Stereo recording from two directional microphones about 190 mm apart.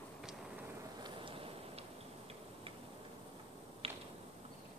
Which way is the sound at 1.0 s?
25° right (ahead or behind).